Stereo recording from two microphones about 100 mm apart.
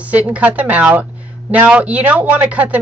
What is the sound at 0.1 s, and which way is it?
Speech, 15° right (ahead or behind).